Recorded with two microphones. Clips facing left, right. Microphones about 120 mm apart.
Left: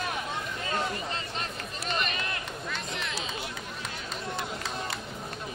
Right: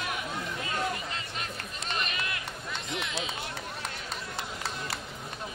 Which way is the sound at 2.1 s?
35° left (ahead or behind).